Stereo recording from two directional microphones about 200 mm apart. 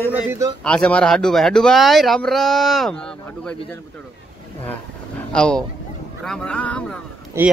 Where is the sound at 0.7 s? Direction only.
5° left (ahead or behind).